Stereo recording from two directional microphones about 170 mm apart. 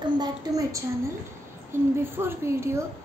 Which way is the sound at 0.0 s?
25° right (ahead or behind).